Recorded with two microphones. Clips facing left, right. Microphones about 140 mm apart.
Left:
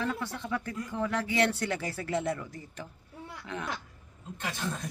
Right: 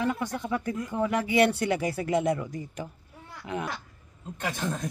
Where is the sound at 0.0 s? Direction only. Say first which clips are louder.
Right 5 dB; 15° right (ahead or behind).